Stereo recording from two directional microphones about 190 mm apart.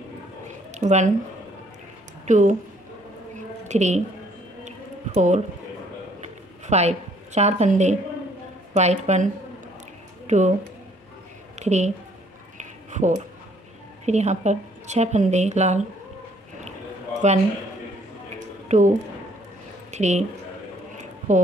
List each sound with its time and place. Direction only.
0.7 s speech: 40° right (ahead or behind)
2.2 s a woman's voice: 40° right (ahead or behind)
3.6 s a woman's voice: 40° right (ahead or behind)
4.6 s a sound: 40° right (ahead or behind)
8.7 s a woman's voice: 35° right (ahead or behind)
11.6 s speech: 35° right (ahead or behind)
12.5 s a sound: 40° right (ahead or behind)
14.0 s a woman's voice: 35° right (ahead or behind)
18.7 s speech: 40° right (ahead or behind)
21.3 s a woman's voice: 40° right (ahead or behind)